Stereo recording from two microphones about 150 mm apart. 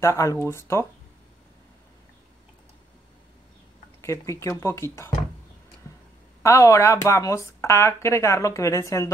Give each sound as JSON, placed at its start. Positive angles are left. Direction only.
{"t": 0.0, "sound": "speech", "side_deg": 20}
{"t": 4.0, "sound": "speech", "side_deg": 20}
{"t": 6.4, "sound": "speech", "side_deg": 20}